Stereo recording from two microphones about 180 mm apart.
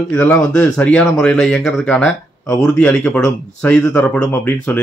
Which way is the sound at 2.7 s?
10° left (ahead or behind).